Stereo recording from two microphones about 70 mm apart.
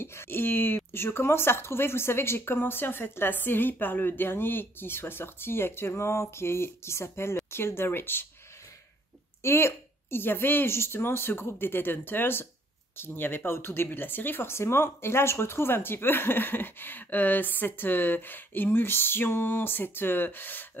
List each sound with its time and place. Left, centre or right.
0.0 s speech: left
9.4 s speech: left